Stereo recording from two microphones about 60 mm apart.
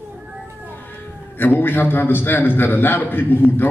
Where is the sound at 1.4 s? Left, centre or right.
Left.